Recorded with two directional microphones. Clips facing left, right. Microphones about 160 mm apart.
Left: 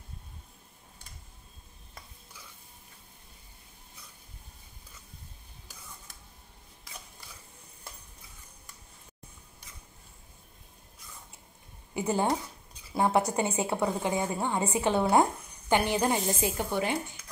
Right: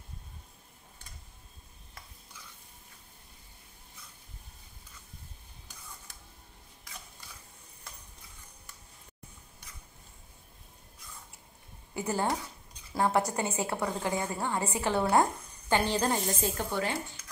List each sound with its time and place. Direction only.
11.9 s a woman's voice: 20° left (ahead or behind)